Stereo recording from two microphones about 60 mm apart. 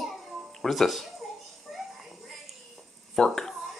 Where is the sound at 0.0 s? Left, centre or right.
Centre.